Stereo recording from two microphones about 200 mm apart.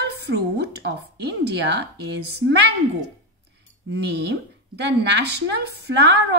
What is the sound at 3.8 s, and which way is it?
A woman's voice, 60° right (ahead or behind).